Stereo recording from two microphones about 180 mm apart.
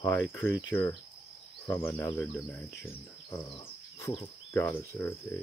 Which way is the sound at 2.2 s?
10° left (ahead or behind).